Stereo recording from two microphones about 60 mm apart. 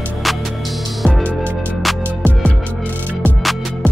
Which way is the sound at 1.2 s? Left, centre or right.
Left.